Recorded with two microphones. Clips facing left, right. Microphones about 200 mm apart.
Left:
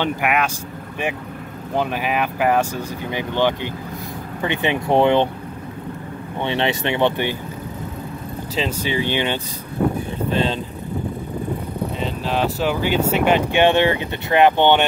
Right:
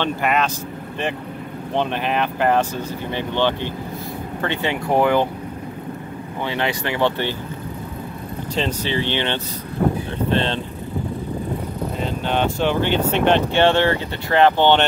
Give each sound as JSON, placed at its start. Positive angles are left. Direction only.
{"t": 0.0, "sound": "speech", "side_deg": 10}
{"t": 1.7, "sound": "speech", "side_deg": 5}
{"t": 6.4, "sound": "speech", "side_deg": 25}
{"t": 8.5, "sound": "speech", "side_deg": 10}
{"t": 12.0, "sound": "speech", "side_deg": 0}